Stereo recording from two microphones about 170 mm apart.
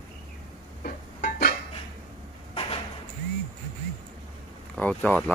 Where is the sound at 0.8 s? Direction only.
65° left (ahead or behind).